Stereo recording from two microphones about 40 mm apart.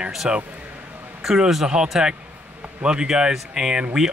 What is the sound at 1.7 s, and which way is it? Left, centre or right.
Speech, right.